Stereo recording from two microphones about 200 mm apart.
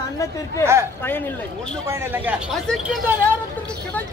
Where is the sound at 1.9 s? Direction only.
10° right (ahead or behind).